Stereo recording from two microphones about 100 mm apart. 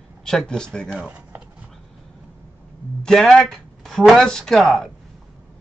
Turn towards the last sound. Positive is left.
turn(degrees=0)  # may be behind; listen again after turning